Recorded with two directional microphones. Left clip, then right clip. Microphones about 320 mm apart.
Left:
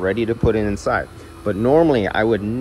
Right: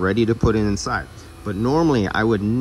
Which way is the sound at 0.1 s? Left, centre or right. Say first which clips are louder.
Left 1 dB; centre.